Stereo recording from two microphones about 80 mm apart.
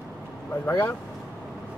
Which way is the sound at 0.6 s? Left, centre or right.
Left.